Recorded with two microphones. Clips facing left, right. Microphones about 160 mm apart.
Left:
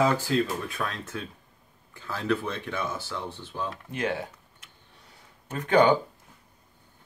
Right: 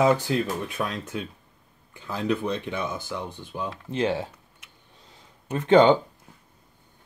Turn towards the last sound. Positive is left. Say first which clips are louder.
# right 4 dB
turn(degrees=-25)  # may be behind; listen again after turning